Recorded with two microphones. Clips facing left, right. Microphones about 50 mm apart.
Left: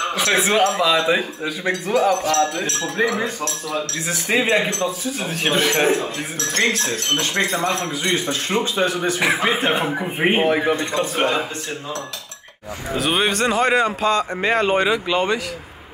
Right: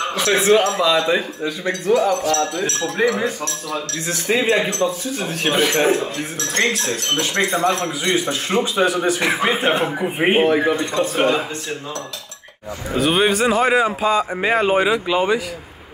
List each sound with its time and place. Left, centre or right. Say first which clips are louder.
0.1 s speech: right 5 dB; centre
3.1 s speech: right 2 dB; centre
9.2 s speech: left 3 dB; centre
10.5 s speech: right 1 dB; centre
12.9 s speech: right 3 dB; centre